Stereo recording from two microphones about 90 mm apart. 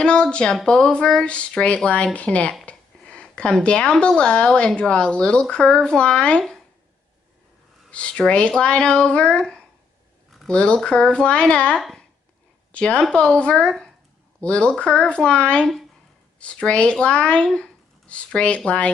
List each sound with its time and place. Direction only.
0.0 s speech: 10° left (ahead or behind)
7.9 s speech: 10° left (ahead or behind)